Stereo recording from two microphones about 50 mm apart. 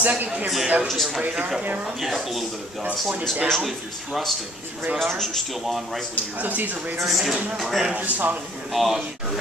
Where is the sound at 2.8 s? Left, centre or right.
Right.